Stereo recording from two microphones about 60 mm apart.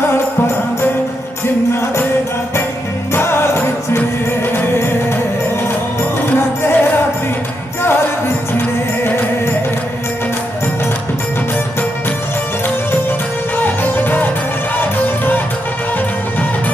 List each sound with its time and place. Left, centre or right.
3.1 s music: left
6.3 s music: left
13.6 s music: left